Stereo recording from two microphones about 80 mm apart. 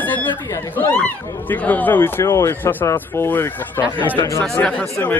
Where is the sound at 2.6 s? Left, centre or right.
Left.